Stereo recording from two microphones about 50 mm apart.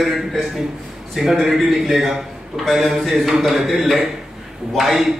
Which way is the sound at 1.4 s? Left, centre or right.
Centre.